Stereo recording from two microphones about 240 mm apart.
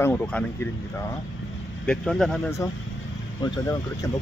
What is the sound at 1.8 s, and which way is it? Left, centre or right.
Speech, centre.